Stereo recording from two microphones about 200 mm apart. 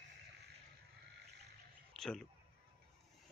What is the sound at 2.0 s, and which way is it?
Speech, 5° left (ahead or behind).